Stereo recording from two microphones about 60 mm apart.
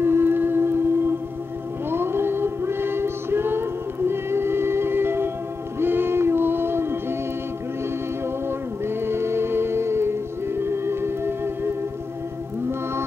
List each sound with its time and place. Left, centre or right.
0.0 s humming: right
1.9 s female singing: right
5.8 s music: right
8.5 s music: right